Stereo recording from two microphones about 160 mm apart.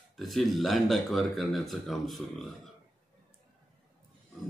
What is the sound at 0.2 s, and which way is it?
Speech, centre (ahead or behind).